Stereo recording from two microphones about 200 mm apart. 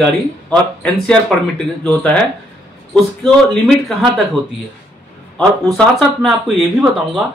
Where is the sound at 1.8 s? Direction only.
5° left (ahead or behind).